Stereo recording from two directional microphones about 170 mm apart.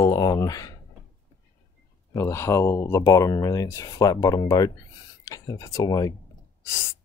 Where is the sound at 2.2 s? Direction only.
15° left (ahead or behind).